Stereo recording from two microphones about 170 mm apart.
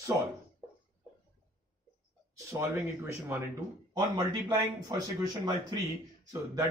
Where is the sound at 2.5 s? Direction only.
15° right (ahead or behind).